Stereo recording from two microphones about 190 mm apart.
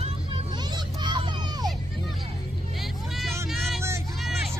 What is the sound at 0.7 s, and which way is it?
Vehicle, 25° right (ahead or behind).